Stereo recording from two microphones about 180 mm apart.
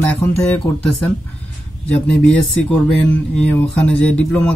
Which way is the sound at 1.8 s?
5° left (ahead or behind).